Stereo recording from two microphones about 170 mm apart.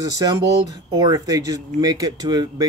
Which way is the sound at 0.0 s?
25° right (ahead or behind).